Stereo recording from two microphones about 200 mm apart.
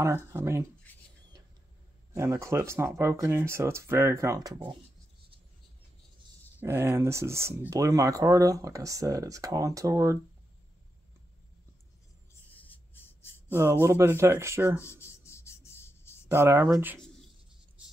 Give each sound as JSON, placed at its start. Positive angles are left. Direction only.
{"t": 0.0, "sound": "speech", "side_deg": -10}
{"t": 0.9, "sound": "a sound", "side_deg": 10}
{"t": 2.1, "sound": "speech", "side_deg": -15}
{"t": 6.6, "sound": "speech", "side_deg": -10}
{"t": 12.5, "sound": "writing", "side_deg": 10}
{"t": 13.5, "sound": "speech", "side_deg": -10}
{"t": 14.8, "sound": "rub", "side_deg": 10}
{"t": 16.3, "sound": "speech", "side_deg": -10}